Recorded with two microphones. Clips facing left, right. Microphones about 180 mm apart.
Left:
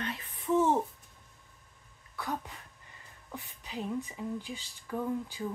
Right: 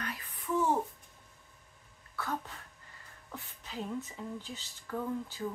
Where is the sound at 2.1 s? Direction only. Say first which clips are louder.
Left 1 dB; 15° left (ahead or behind).